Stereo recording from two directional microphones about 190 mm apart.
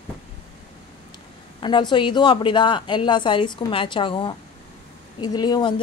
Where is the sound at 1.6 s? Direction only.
25° left (ahead or behind).